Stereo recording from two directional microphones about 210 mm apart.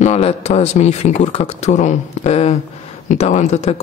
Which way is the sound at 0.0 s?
30° left (ahead or behind).